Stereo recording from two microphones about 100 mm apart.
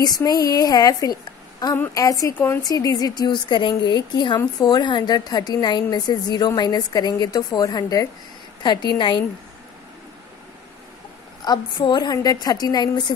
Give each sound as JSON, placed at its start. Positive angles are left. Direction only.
{"t": 0.0, "sound": "a woman's voice", "side_deg": 40}
{"t": 2.3, "sound": "a woman's voice", "side_deg": 20}
{"t": 2.6, "sound": "a woman's voice", "side_deg": 40}
{"t": 8.6, "sound": "a woman's voice", "side_deg": 50}
{"t": 11.4, "sound": "a woman's voice", "side_deg": 45}